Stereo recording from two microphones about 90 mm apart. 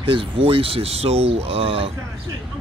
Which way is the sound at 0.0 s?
75° right (ahead or behind).